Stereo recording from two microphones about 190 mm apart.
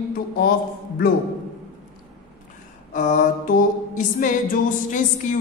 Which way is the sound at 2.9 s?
45° left (ahead or behind).